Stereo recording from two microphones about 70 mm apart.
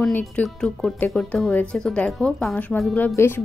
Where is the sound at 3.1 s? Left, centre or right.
Left.